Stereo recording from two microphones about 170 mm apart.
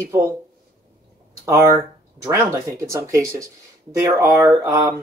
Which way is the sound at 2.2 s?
15° right (ahead or behind).